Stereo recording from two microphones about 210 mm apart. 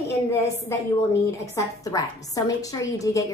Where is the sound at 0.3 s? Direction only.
10° left (ahead or behind).